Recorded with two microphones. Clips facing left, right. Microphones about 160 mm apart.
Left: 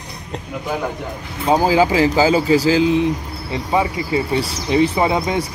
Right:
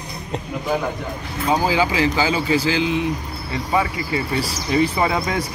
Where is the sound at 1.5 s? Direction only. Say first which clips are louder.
Left 5 dB; 40° left (ahead or behind).